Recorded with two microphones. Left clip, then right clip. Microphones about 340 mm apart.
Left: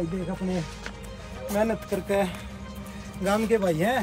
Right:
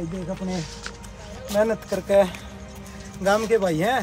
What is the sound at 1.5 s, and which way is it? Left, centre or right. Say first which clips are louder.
Speech: right 4 dB; centre.